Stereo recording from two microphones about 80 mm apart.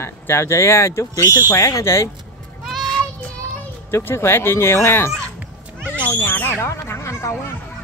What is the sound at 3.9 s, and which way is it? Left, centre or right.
Speech, left.